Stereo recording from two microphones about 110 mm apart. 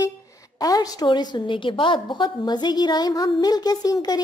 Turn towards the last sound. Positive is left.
turn(degrees=35)  # may be behind; listen again after turning